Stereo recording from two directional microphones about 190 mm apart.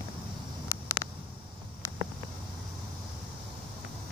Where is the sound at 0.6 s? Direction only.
15° left (ahead or behind).